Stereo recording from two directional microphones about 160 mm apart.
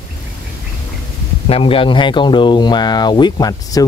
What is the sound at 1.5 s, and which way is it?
Speech, 35° left (ahead or behind).